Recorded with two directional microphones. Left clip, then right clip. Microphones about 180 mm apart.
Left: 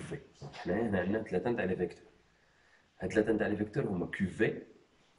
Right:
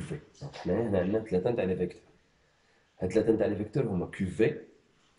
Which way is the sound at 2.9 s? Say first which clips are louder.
Right 4 dB; 25° right (ahead or behind).